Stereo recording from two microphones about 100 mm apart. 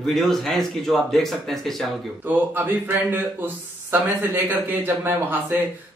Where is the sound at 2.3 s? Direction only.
20° right (ahead or behind).